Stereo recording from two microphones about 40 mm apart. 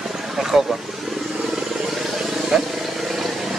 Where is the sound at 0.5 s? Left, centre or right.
Centre.